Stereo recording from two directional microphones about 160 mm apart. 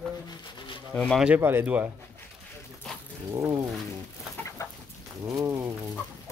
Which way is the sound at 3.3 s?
20° right (ahead or behind).